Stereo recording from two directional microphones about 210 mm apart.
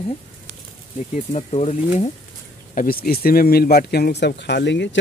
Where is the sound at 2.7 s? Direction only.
40° left (ahead or behind).